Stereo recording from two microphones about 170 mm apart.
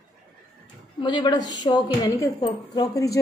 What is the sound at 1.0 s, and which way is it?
A woman's voice, 25° left (ahead or behind).